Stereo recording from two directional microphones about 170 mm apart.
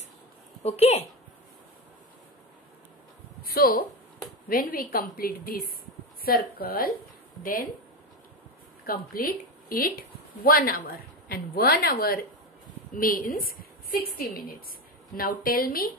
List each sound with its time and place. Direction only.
0.7 s a woman's voice: 40° left (ahead or behind)
3.4 s a woman's voice: 60° left (ahead or behind)
8.8 s a woman's voice: 60° left (ahead or behind)